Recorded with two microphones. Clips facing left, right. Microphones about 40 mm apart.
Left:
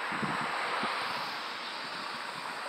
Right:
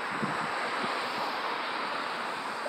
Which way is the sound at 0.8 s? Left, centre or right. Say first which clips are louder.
Right 2 dB; centre.